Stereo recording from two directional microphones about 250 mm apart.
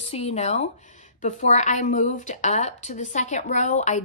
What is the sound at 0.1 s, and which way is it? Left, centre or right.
A woman's voice, left.